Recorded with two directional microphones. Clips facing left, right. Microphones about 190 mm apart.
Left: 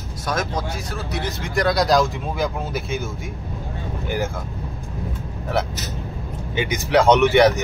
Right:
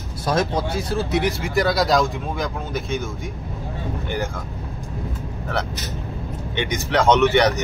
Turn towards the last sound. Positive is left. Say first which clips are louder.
# left 2 dB
turn(degrees=10)  # may be behind; listen again after turning